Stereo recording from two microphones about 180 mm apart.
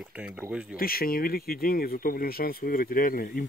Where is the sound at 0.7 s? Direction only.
55° left (ahead or behind).